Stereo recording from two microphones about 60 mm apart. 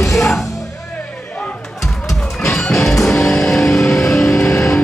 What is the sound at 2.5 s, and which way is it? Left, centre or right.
Music, centre.